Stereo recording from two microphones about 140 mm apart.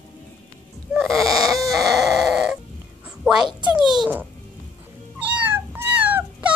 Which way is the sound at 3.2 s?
5° right (ahead or behind).